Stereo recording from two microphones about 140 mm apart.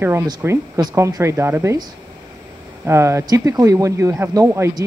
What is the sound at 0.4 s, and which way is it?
Speech, 15° right (ahead or behind).